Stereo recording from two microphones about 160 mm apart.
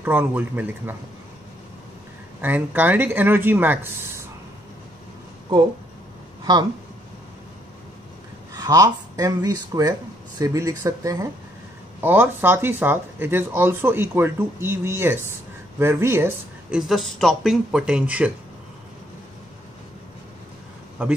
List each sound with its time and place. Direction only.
0.0 s speech: 10° right (ahead or behind)
2.4 s speech: 10° right (ahead or behind)
8.5 s speech: 20° right (ahead or behind)
16.8 s speech: centre (ahead or behind)
21.0 s speech: 10° right (ahead or behind)